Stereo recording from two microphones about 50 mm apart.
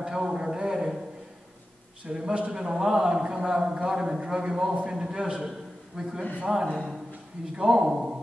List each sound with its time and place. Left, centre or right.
0.0 s a man's voice: centre
2.0 s a man's voice: centre